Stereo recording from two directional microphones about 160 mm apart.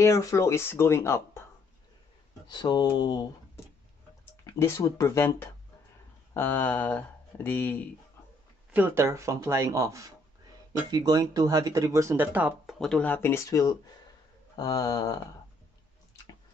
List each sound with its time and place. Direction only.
0.0 s speech: 20° left (ahead or behind)
2.4 s speech: 25° left (ahead or behind)
4.5 s speech: 15° left (ahead or behind)
8.7 s speech: 15° right (ahead or behind)
12.7 s speech: 5° left (ahead or behind); by 15.1 s 20° left (ahead or behind)